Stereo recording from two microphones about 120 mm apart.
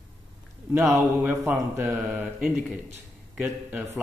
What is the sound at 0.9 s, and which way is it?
Speech, 25° right (ahead or behind).